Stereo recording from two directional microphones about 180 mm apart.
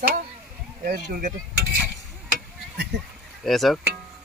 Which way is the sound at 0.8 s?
55° right (ahead or behind).